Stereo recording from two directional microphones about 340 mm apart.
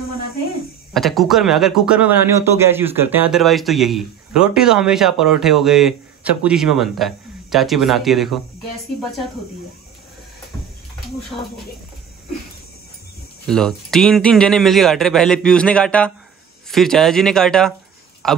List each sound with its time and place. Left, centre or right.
0.9 s speech: centre
13.5 s speech: centre